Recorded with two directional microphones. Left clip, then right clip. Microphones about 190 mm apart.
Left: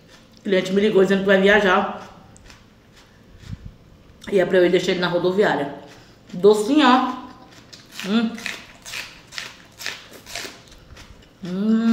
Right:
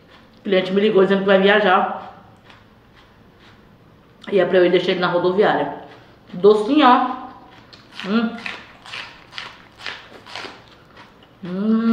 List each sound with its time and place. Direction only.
0.4 s a woman's voice: 30° left (ahead or behind)
4.2 s a woman's voice: 30° left (ahead or behind)
7.9 s a sound: 30° left (ahead or behind)
11.4 s speech: 35° left (ahead or behind)